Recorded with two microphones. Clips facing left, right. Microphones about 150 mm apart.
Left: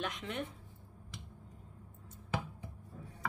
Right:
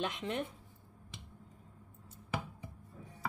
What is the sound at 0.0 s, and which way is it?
Speech, 30° right (ahead or behind).